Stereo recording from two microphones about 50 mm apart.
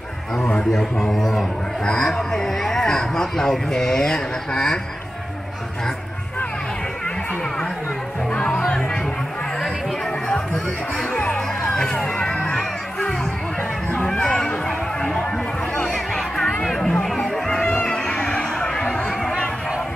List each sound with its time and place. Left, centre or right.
1.1 s speech: centre
8.3 s music: centre
10.2 s music: centre
14.0 s a sound: centre
15.8 s music: centre
17.8 s a sound: centre